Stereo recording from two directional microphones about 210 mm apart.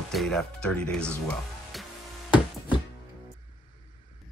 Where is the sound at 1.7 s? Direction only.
Centre (ahead or behind).